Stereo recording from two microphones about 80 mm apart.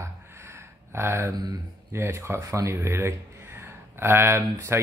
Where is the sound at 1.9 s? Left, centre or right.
Right.